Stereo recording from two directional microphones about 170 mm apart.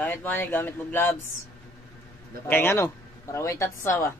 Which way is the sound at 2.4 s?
15° left (ahead or behind).